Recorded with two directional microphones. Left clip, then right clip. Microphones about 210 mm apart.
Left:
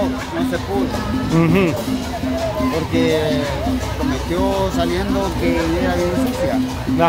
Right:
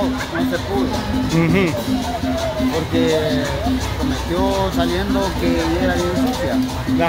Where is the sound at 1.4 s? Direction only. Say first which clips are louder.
Left 2 dB; 10° left (ahead or behind).